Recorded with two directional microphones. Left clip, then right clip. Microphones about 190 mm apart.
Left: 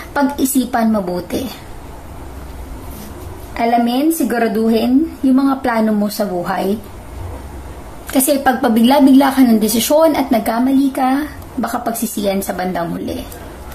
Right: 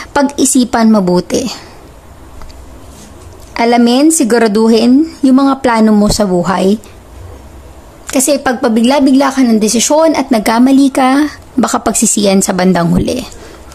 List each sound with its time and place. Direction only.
0.1 s a woman's voice: 40° right (ahead or behind)
3.5 s a woman's voice: 45° right (ahead or behind)
8.1 s a woman's voice: 30° right (ahead or behind); by 13.1 s 45° right (ahead or behind)